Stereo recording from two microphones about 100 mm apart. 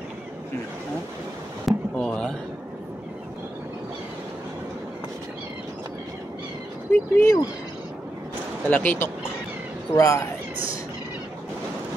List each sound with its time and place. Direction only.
1.7 s a sound: 5° left (ahead or behind)
6.9 s speech: 30° left (ahead or behind)
8.6 s speech: 20° left (ahead or behind)
9.9 s speech: 35° left (ahead or behind)